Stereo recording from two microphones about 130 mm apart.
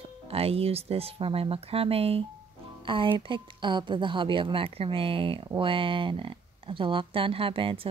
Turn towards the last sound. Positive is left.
turn(degrees=-45)  # may be behind; listen again after turning